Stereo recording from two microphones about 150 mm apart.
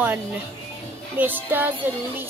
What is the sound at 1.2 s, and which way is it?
Speech, 10° right (ahead or behind).